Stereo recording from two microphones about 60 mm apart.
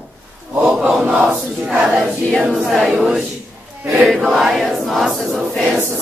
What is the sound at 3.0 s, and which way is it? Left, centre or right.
Choir, centre.